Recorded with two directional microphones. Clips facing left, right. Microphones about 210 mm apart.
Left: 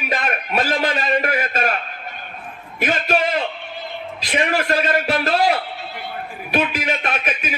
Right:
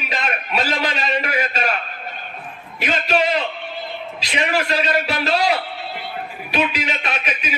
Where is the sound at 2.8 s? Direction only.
50° left (ahead or behind).